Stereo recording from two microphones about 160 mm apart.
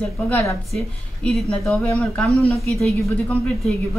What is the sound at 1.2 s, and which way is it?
A woman's voice, centre (ahead or behind).